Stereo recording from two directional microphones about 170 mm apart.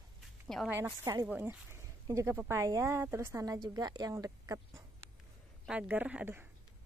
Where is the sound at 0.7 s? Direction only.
10° right (ahead or behind).